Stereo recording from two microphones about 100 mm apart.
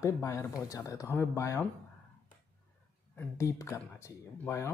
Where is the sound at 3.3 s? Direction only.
30° left (ahead or behind).